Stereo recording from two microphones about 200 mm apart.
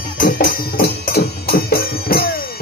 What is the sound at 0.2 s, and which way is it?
Music, 45° left (ahead or behind).